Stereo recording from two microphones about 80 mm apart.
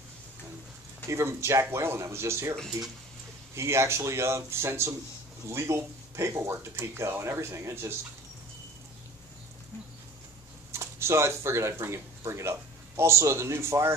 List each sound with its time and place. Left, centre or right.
1.0 s speech: right
10.7 s speech: right